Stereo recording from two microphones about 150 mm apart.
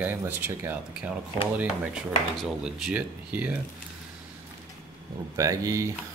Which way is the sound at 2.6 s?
5° right (ahead or behind).